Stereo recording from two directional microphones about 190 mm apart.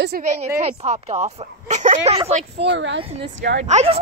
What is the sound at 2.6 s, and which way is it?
Speech, 65° right (ahead or behind).